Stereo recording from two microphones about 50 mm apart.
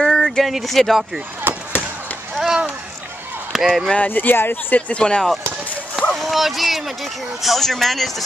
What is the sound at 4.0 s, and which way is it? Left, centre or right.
Speech, left.